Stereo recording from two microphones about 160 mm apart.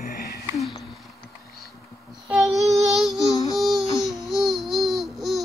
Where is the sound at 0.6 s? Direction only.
Centre (ahead or behind).